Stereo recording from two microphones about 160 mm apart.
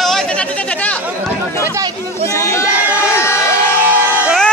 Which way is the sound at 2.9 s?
15° left (ahead or behind).